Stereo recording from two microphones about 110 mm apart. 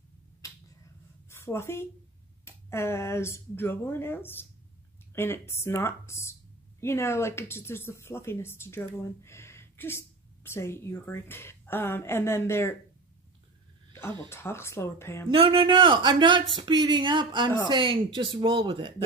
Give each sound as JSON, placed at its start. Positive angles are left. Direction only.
{"t": 1.3, "sound": "a woman's voice", "side_deg": 25}
{"t": 14.3, "sound": "speech", "side_deg": 25}
{"t": 15.2, "sound": "speech", "side_deg": -55}